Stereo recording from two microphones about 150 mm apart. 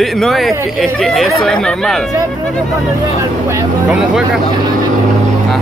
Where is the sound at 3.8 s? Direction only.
5° right (ahead or behind).